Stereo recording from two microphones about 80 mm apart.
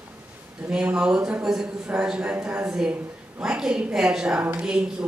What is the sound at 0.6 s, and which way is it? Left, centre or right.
A woman's voice, centre.